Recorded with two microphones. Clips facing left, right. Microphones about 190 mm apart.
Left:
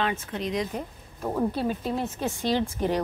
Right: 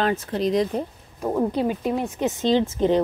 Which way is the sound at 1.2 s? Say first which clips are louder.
Right 4 dB; 15° right (ahead or behind).